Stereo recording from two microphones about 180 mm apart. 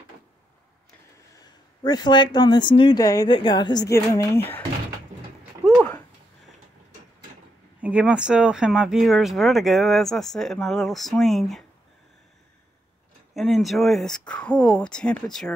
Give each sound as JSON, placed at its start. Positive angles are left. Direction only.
{"t": 1.8, "sound": "speech", "side_deg": 25}
{"t": 7.8, "sound": "speech", "side_deg": -5}
{"t": 13.3, "sound": "speech", "side_deg": 0}